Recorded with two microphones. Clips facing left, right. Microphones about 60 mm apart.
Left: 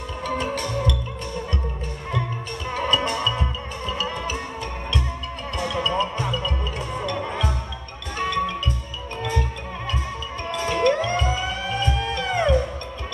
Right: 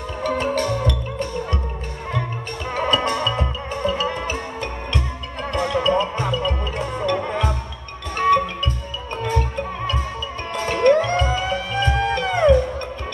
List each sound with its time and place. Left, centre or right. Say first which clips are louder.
0.4 s music: right 5 dB; right
2.7 s music: right 3 dB; right
5.5 s music: right 6 dB; right